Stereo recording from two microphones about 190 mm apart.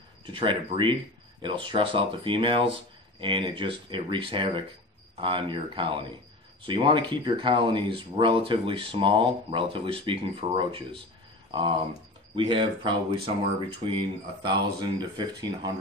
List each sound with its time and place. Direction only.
0.2 s speech: 25° right (ahead or behind)
14.4 s speech: 25° right (ahead or behind)